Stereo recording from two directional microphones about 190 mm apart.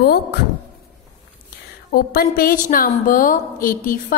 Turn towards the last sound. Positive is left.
turn(degrees=45)  # may be behind; listen again after turning